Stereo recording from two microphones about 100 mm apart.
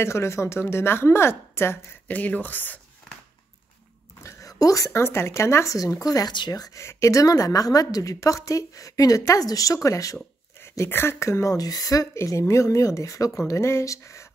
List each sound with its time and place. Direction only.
0.0 s a woman's voice: 25° left (ahead or behind)
4.2 s speech: 30° left (ahead or behind)